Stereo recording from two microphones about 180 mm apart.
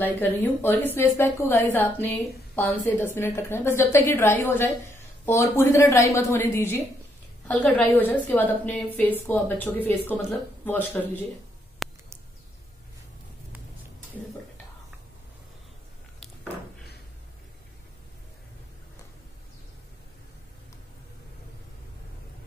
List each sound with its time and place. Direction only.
0.0 s a woman's voice: 10° left (ahead or behind)
11.8 s mouse: centre (ahead or behind)